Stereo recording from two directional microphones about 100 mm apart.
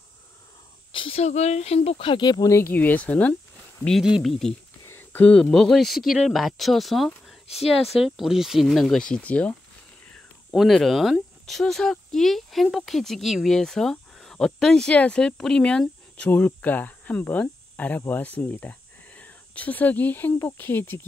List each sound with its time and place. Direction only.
0.9 s speech: 75° left (ahead or behind); by 2.5 s 45° left (ahead or behind)
2.5 s speech: 20° left (ahead or behind)
4.0 s speech: centre (ahead or behind)
4.8 s speech: 20° left (ahead or behind); by 9.0 s centre (ahead or behind)
9.0 s speech: 15° left (ahead or behind)
10.5 s speech: centre (ahead or behind); by 21.0 s 20° left (ahead or behind)